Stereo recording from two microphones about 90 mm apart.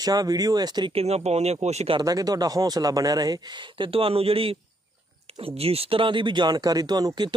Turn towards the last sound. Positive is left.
turn(degrees=-50)  # may be behind; listen again after turning